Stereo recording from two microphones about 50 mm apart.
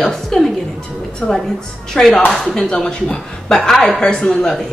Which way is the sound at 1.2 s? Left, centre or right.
Centre.